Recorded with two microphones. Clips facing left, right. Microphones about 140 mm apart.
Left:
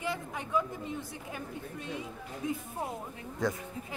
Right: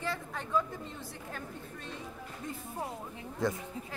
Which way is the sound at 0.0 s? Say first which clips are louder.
Left 1 dB; 15° left (ahead or behind).